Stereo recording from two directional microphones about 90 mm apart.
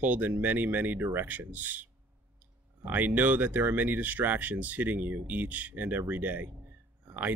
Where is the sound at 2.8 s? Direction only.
20° right (ahead or behind).